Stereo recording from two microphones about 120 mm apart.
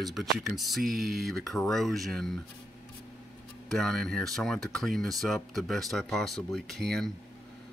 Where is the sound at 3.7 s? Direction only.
5° left (ahead or behind).